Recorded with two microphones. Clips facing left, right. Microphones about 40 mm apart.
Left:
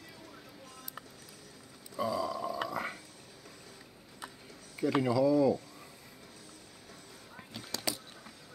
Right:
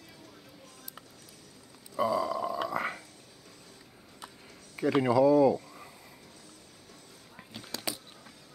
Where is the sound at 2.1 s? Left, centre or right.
Right.